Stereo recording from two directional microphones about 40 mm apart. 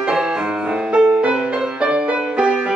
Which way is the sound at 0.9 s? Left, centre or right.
Right.